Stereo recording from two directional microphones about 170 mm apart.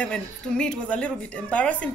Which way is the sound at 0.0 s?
5° left (ahead or behind).